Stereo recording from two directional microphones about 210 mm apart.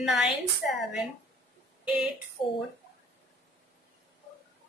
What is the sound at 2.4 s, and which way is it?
Speech, 25° left (ahead or behind).